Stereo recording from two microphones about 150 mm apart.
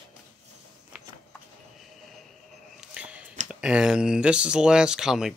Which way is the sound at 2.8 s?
10° right (ahead or behind).